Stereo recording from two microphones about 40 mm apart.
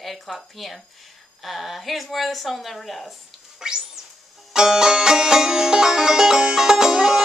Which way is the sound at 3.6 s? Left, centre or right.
Centre.